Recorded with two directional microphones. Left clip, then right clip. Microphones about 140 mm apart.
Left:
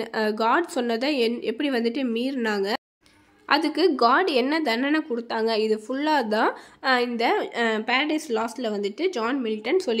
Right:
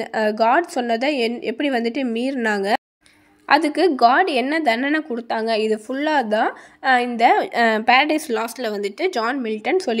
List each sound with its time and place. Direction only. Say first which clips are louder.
0.0 s a woman's voice: right 5 dB; 25° right (ahead or behind)
3.9 s a woman's voice: right 5 dB; 15° right (ahead or behind)
7.4 s speech: right 8 dB; 40° right (ahead or behind)